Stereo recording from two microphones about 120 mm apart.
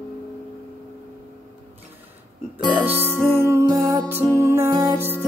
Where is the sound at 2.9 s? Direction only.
20° left (ahead or behind).